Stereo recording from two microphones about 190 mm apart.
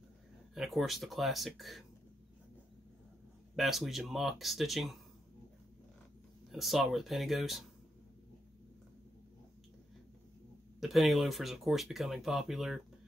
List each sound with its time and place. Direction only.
0.6 s speech: centre (ahead or behind)
3.5 s speech: centre (ahead or behind)
6.5 s speech: centre (ahead or behind)
10.8 s speech: centre (ahead or behind)